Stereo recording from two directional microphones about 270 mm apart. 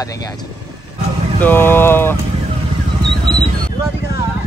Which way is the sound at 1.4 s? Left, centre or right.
Centre.